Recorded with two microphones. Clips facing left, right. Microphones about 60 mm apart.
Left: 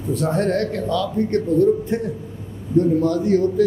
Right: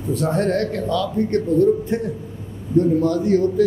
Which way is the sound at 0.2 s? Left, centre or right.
Centre.